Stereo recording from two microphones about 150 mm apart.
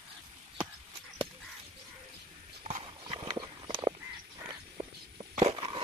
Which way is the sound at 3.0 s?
30° right (ahead or behind).